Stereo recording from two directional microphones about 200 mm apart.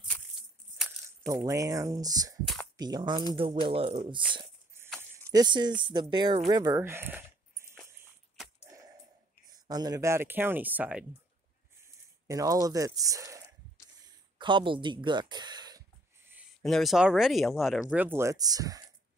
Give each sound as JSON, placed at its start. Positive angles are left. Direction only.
{"t": 1.3, "sound": "speech", "side_deg": -15}
{"t": 2.4, "sound": "speech", "side_deg": 0}
{"t": 2.8, "sound": "speech", "side_deg": -20}
{"t": 9.7, "sound": "speech", "side_deg": -20}
{"t": 12.3, "sound": "speech", "side_deg": -15}
{"t": 14.0, "sound": "a sound", "side_deg": -25}
{"t": 16.6, "sound": "speech", "side_deg": 0}